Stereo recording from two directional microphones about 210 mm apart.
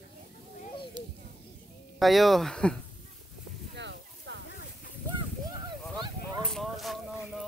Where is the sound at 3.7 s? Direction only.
55° right (ahead or behind).